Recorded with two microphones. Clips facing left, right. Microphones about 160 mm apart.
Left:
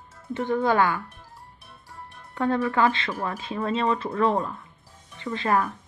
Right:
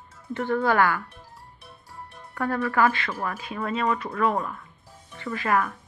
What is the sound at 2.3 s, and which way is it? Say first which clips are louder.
Speech: left 1 dB; 20° left (ahead or behind).